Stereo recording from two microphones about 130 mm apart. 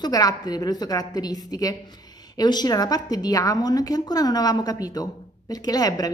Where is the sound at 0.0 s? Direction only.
30° left (ahead or behind).